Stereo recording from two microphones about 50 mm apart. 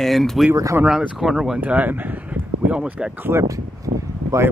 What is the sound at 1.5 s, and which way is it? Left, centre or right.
Speech, right.